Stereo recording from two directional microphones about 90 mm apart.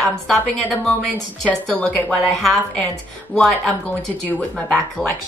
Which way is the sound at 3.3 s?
15° left (ahead or behind).